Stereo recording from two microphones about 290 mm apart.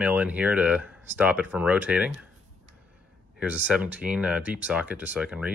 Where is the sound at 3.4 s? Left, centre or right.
Centre.